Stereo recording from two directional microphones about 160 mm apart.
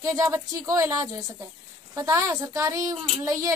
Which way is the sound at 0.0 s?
20° right (ahead or behind).